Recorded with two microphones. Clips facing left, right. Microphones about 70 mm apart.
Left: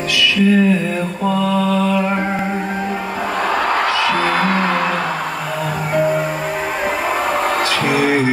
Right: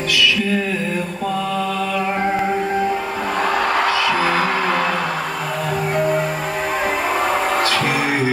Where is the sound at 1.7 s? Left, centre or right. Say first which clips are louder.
Left 4 dB; centre.